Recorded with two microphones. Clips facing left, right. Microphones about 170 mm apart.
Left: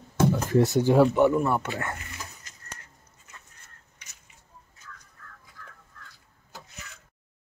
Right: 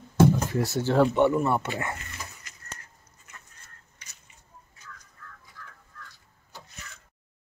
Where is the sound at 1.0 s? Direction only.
Centre (ahead or behind).